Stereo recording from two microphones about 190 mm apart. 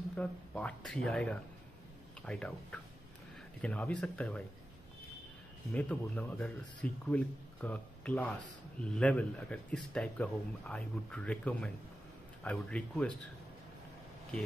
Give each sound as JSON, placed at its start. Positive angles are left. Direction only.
{"t": 0.1, "sound": "speech", "side_deg": 5}
{"t": 5.7, "sound": "speech", "side_deg": 10}